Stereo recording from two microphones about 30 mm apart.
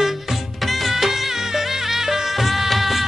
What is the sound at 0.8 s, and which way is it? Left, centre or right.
Music, centre.